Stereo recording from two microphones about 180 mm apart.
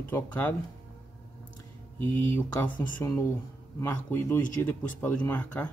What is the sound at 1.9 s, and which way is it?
Speech, 10° left (ahead or behind).